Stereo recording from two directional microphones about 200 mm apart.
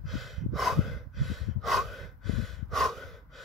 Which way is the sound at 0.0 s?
Centre (ahead or behind).